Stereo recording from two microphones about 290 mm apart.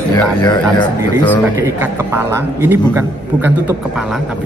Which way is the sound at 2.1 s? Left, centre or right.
Centre.